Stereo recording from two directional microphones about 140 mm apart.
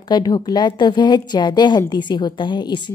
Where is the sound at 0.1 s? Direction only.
30° left (ahead or behind).